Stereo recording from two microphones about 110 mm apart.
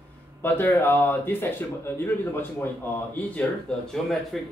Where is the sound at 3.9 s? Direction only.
Centre (ahead or behind).